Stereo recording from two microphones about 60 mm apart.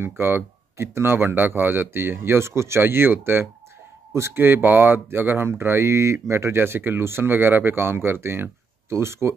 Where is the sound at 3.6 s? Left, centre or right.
Right.